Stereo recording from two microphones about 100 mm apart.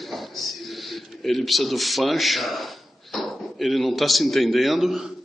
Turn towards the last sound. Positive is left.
turn(degrees=-5)  # may be behind; listen again after turning